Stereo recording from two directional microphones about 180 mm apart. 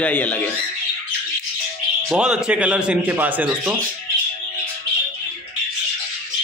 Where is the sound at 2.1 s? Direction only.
5° right (ahead or behind).